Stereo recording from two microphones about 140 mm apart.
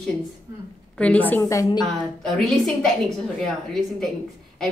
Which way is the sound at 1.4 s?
25° left (ahead or behind).